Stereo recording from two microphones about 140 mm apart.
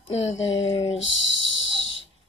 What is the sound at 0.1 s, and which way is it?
Speech, 55° left (ahead or behind).